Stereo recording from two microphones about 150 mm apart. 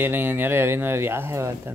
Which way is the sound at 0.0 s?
15° right (ahead or behind).